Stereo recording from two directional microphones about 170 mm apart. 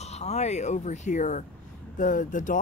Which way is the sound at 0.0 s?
40° left (ahead or behind).